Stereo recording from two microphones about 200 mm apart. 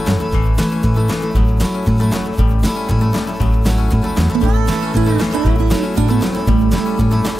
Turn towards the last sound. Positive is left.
turn(degrees=0)  # may be behind; listen again after turning